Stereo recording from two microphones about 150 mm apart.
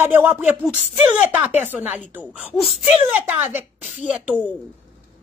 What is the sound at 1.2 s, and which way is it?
A man's voice, 10° right (ahead or behind).